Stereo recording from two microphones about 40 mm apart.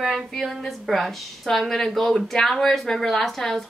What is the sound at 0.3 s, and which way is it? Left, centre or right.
A woman's voice, centre.